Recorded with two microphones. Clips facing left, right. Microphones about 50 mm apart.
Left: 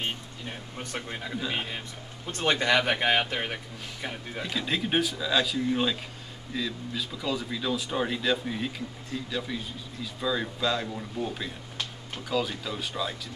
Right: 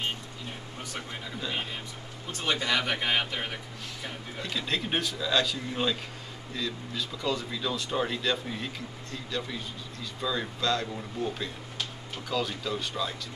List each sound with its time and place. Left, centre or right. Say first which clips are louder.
1.4 s speech: right 1 dB; centre